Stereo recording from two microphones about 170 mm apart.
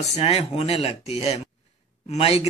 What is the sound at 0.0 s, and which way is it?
Speech, 35° left (ahead or behind).